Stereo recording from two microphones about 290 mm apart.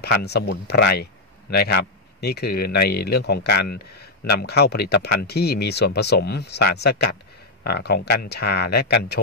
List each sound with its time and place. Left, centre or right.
0.0 s speech: left